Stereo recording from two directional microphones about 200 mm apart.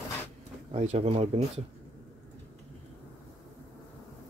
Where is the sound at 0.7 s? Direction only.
30° right (ahead or behind).